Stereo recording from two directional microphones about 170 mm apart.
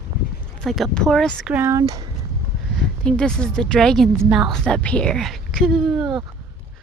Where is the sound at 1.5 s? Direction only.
15° right (ahead or behind).